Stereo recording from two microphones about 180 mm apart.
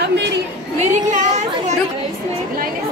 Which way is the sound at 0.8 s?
45° right (ahead or behind).